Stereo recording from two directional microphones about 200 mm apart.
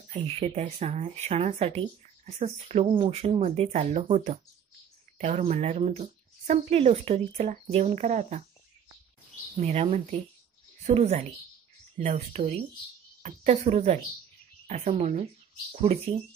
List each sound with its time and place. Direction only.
0.1 s speech: 30° right (ahead or behind)
9.6 s a woman's voice: 30° right (ahead or behind)